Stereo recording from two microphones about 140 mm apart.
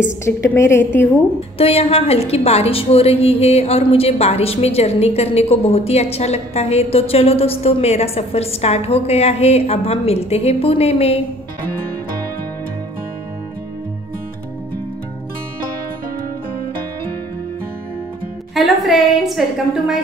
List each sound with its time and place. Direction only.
0.0 s a woman's voice: 20° left (ahead or behind)
1.6 s a woman's voice: 45° left (ahead or behind)
18.5 s a woman's voice: centre (ahead or behind)